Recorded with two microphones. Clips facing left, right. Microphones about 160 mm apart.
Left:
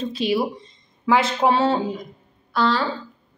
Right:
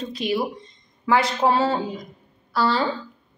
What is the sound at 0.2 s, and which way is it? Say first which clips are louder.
Speech: left 3 dB; 30° left (ahead or behind).